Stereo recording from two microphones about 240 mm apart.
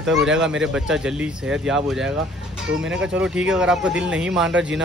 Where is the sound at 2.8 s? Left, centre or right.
Right.